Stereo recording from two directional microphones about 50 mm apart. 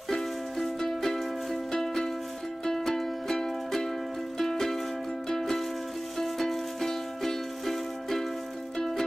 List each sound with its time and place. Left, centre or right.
0.1 s music: centre